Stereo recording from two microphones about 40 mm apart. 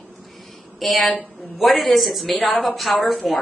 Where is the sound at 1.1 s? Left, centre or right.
Left.